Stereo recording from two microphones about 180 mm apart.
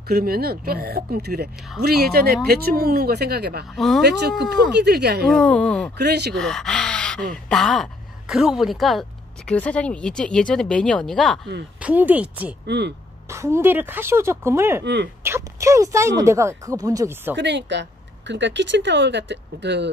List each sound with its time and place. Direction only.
0.1 s speech: 55° right (ahead or behind)
3.7 s speech: centre (ahead or behind)
4.0 s speech: 70° right (ahead or behind)
5.3 s speech: 5° left (ahead or behind)
5.9 s speech: 65° right (ahead or behind)
6.3 s a woman's voice: centre (ahead or behind)
11.8 s speech: 10° right (ahead or behind)
12.6 s speech: 70° right (ahead or behind)
13.3 s speech: 15° right (ahead or behind)
17.4 s speech: 75° right (ahead or behind)